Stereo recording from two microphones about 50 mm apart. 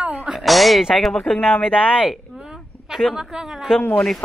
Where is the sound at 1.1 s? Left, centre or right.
Centre.